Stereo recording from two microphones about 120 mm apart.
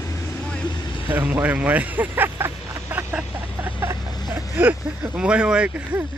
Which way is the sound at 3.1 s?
15° right (ahead or behind).